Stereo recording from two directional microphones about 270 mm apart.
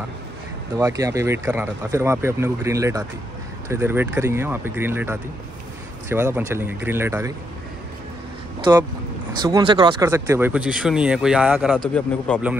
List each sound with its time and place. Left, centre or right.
0.7 s speech: centre
8.5 s speech: centre